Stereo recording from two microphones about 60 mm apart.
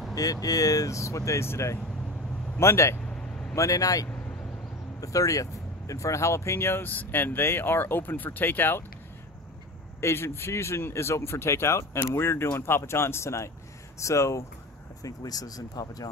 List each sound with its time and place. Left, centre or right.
0.1 s speech: left
3.1 s vehicle: centre
3.5 s speech: left
9.9 s speech: left
15.0 s speech: left